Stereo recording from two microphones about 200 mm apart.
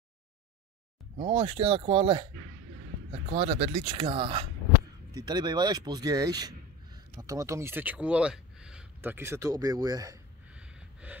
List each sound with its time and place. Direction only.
1.1 s speech: 30° right (ahead or behind)
10.5 s snort: 5° right (ahead or behind)